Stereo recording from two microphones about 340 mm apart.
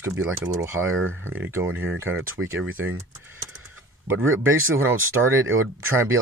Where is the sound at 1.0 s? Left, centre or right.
Right.